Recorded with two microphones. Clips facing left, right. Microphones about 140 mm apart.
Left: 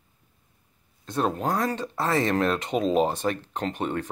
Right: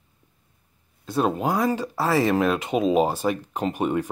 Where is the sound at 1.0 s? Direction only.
5° right (ahead or behind).